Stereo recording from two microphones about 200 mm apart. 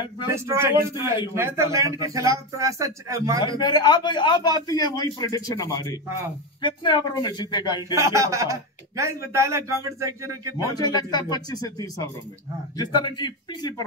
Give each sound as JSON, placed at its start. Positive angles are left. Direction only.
{"t": 0.3, "sound": "a man's voice", "side_deg": -15}
{"t": 3.4, "sound": "a man's voice", "side_deg": 20}
{"t": 7.9, "sound": "a man's voice", "side_deg": -15}
{"t": 10.7, "sound": "a man's voice", "side_deg": 20}